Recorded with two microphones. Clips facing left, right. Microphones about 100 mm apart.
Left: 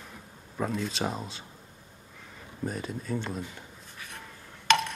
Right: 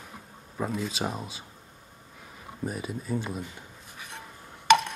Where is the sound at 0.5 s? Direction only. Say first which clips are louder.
Even; 5° right (ahead or behind).